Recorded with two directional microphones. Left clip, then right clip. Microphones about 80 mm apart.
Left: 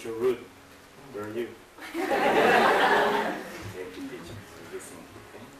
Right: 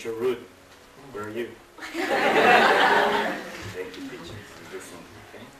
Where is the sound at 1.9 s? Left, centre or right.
Right.